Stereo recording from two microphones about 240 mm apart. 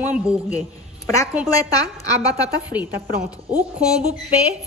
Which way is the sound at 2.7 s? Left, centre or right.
Centre.